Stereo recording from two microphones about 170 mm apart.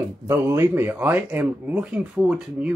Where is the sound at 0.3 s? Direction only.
15° right (ahead or behind).